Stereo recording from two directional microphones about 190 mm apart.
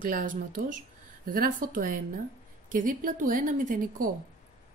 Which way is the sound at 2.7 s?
45° right (ahead or behind).